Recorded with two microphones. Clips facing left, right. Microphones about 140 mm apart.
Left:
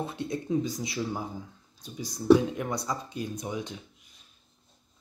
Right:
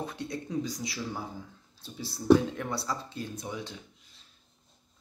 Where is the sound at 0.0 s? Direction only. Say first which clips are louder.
Left 3 dB; 20° left (ahead or behind).